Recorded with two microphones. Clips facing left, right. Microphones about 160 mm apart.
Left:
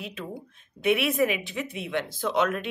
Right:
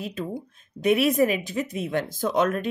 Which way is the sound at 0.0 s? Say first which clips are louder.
Right 5 dB; 40° right (ahead or behind).